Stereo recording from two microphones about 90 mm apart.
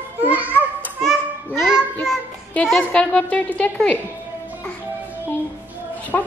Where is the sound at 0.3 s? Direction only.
20° right (ahead or behind).